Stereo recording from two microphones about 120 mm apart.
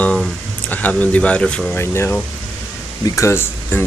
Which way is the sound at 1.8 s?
20° left (ahead or behind).